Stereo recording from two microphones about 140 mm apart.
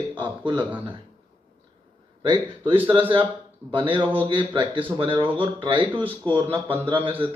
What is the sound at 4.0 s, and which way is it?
Speech, 10° right (ahead or behind).